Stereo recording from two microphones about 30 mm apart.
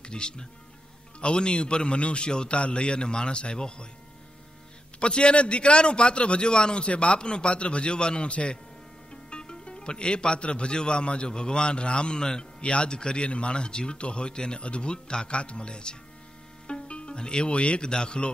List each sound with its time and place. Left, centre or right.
0.0 s speech: left
5.0 s speech: left
6.9 s speech: left
7.2 s speech: left
8.3 s speech: left
9.1 s speech: left
12.6 s speech: left